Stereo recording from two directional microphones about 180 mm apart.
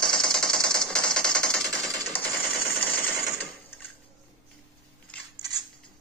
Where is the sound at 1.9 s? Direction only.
20° right (ahead or behind).